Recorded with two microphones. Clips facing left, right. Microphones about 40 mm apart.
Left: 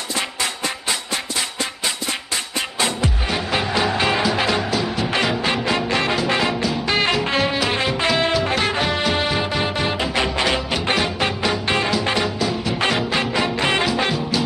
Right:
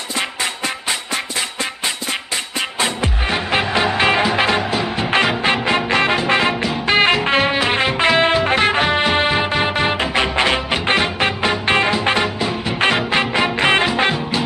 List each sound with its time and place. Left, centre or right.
2.8 s music: right